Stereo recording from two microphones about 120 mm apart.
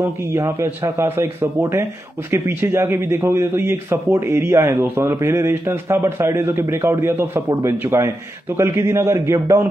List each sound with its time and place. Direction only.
0.0 s a man's voice: 20° right (ahead or behind)